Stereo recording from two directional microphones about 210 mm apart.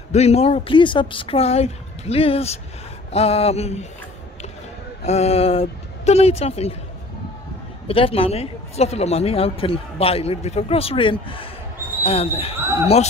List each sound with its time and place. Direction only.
0.1 s a woman's voice: 30° left (ahead or behind)
5.0 s a woman's voice: 30° left (ahead or behind)
7.9 s a woman's voice: 25° left (ahead or behind)